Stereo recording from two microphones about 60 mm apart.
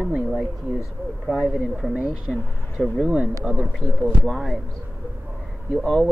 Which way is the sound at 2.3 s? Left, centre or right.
Centre.